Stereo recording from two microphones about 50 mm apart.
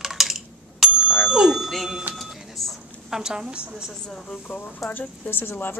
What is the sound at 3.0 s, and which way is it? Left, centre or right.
Speech, centre.